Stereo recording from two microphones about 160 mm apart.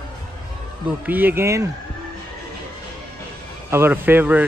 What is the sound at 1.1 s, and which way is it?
Speech, 10° right (ahead or behind).